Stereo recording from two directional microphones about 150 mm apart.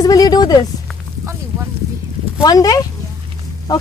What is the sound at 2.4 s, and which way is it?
Speech, 25° left (ahead or behind).